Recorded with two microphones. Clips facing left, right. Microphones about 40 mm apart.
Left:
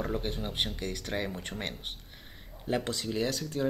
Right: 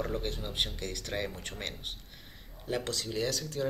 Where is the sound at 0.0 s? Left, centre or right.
Centre.